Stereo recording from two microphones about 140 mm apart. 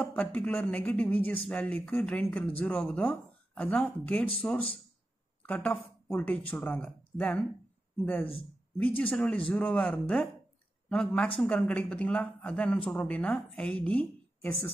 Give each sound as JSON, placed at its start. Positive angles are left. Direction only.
{"t": 0.0, "sound": "speech", "side_deg": 10}
{"t": 5.4, "sound": "speech", "side_deg": 10}